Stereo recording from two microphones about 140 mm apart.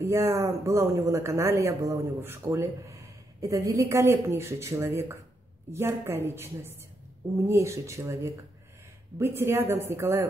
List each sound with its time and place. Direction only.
0.0 s a woman's voice: 20° right (ahead or behind)